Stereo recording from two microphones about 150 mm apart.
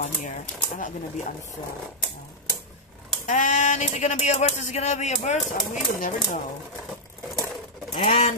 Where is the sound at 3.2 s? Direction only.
55° left (ahead or behind).